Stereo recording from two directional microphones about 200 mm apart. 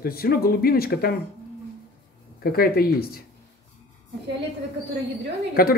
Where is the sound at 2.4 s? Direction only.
50° left (ahead or behind).